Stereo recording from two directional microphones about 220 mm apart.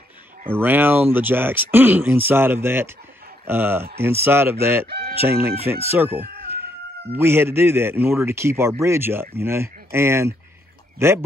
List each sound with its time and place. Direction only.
0.6 s speech: 10° right (ahead or behind)
4.8 s speech: 45° right (ahead or behind)
5.2 s speech: 10° right (ahead or behind)